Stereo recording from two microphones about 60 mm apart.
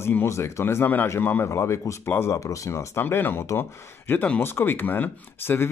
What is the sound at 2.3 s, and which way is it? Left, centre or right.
Speech, left.